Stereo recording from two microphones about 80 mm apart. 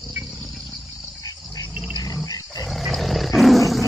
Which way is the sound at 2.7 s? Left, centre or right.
Centre.